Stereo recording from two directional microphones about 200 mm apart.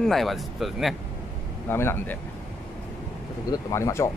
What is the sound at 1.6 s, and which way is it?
Speech, 10° left (ahead or behind).